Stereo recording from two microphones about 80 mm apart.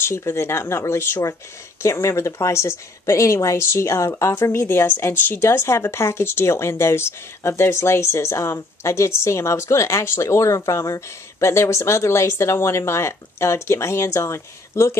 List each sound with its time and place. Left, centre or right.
0.0 s a woman's voice: left